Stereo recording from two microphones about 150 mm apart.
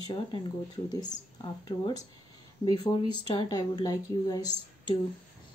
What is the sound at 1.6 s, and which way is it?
A woman's voice, 30° left (ahead or behind).